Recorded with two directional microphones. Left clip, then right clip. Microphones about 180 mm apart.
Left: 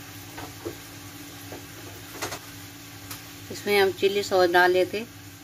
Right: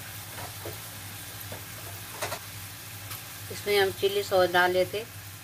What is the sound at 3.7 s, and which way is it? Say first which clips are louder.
Speech: left 3 dB; 30° left (ahead or behind).